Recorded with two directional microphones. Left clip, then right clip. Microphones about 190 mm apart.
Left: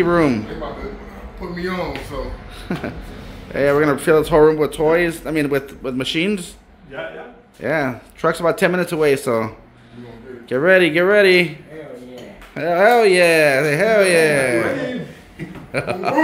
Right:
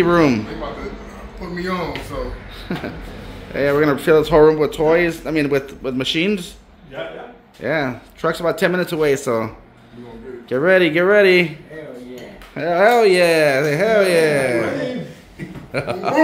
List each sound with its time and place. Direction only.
0.0 s a man's voice: 10° right (ahead or behind)
1.5 s speech: 5° right (ahead or behind)
2.7 s speech: 15° left (ahead or behind)
3.5 s speech: 5° left (ahead or behind)
7.6 s speech: 5° left (ahead or behind)
10.5 s speech: centre (ahead or behind)
12.5 s speech: centre (ahead or behind)